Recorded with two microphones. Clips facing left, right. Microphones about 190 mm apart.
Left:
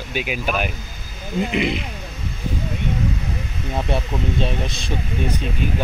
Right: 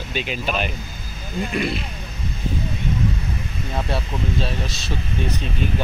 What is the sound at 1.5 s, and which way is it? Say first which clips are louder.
Speech: left 1 dB; 20° left (ahead or behind).